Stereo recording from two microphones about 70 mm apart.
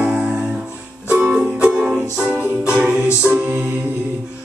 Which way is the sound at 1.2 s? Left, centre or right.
Centre.